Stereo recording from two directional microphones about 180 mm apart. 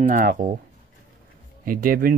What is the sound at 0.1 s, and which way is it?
Speech, 50° right (ahead or behind).